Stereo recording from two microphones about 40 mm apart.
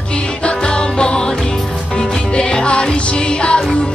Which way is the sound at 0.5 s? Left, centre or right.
Left.